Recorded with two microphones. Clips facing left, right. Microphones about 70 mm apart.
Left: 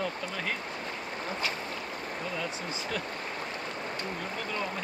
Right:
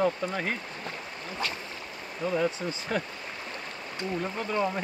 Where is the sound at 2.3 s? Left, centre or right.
Right.